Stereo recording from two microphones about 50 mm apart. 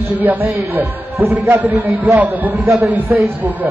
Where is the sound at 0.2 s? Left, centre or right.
Right.